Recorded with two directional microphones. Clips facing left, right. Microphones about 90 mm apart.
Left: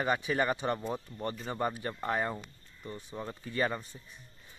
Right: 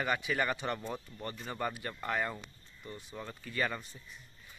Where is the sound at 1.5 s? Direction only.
25° left (ahead or behind).